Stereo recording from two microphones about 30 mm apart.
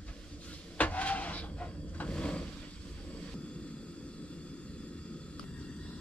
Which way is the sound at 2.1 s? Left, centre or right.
Left.